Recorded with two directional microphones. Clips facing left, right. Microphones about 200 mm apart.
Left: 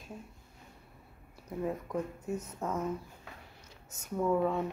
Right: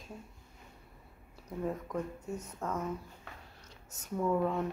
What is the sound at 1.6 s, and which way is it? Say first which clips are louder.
Speech: left 1 dB; 5° left (ahead or behind).